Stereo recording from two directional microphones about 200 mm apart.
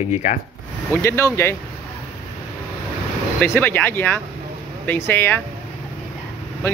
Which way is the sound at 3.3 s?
10° left (ahead or behind).